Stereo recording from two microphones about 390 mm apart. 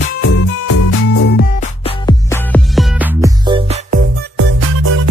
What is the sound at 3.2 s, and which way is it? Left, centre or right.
Music, centre.